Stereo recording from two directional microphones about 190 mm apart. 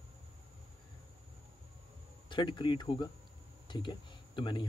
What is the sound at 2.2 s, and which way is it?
Speech, 25° left (ahead or behind).